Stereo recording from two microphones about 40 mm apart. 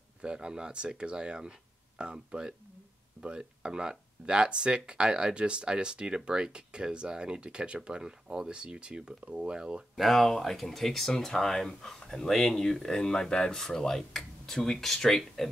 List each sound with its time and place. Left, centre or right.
0.2 s speech: right
9.9 s speech: centre
12.3 s speech: centre